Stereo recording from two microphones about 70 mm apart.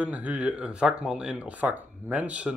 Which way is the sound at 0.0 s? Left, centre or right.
Centre.